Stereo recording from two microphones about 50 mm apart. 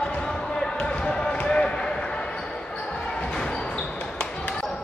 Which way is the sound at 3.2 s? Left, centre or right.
Centre.